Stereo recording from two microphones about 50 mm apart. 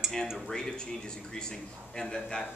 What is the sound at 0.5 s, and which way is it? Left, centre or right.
A man's voice, centre.